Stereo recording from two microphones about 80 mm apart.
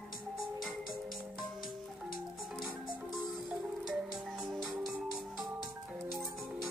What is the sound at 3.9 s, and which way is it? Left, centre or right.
Music, centre.